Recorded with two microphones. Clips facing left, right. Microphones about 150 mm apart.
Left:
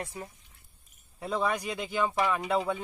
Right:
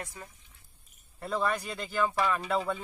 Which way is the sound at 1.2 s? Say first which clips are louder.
Left 1 dB; 10° left (ahead or behind).